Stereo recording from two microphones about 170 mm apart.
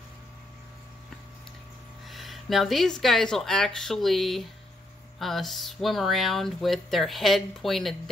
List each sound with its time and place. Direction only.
2.0 s speech: centre (ahead or behind)